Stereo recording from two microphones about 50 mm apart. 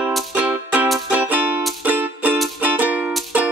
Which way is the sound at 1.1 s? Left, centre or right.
Right.